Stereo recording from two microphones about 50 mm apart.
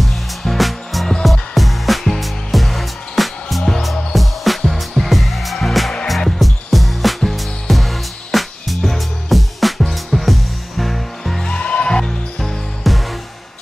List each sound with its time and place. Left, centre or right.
0.0 s music: centre
11.4 s music: centre